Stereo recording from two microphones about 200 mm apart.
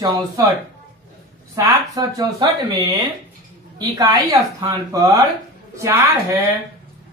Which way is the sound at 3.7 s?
20° right (ahead or behind).